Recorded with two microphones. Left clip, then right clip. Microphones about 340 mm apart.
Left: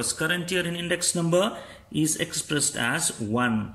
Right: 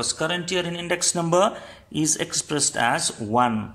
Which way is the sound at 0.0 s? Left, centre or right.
Centre.